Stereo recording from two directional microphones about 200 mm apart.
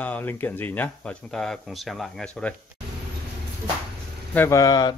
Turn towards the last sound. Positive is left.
turn(degrees=20)  # may be behind; listen again after turning